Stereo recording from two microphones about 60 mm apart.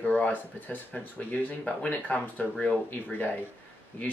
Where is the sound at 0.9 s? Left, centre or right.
Centre; by 4.1 s left.